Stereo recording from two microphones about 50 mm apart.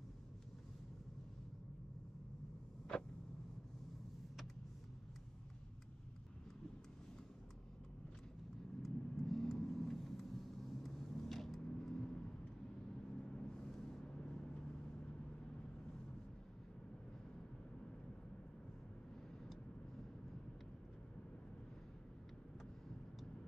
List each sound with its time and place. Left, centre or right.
8.8 s vehicle: centre
13.3 s vehicle: left
13.7 s vehicle: centre
14.0 s vehicle: centre